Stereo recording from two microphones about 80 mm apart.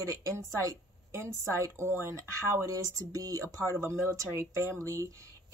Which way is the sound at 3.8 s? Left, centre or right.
Right.